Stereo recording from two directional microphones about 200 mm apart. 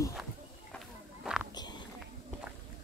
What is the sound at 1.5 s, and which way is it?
Biting, 20° left (ahead or behind).